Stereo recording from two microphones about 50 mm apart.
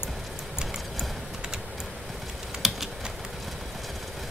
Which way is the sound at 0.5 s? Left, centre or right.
Centre.